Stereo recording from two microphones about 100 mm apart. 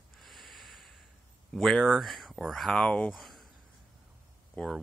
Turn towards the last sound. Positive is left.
turn(degrees=0)  # may be behind; listen again after turning